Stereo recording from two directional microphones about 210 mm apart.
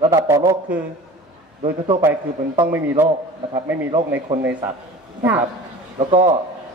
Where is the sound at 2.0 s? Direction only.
15° right (ahead or behind).